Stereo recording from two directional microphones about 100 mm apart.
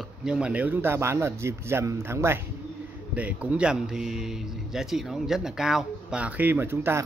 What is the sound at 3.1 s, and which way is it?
A man's voice, 15° right (ahead or behind).